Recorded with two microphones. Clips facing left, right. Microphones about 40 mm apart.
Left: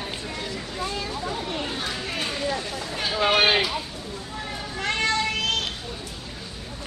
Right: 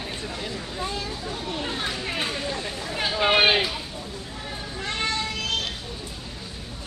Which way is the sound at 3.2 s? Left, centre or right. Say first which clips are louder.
Right 1 dB; centre.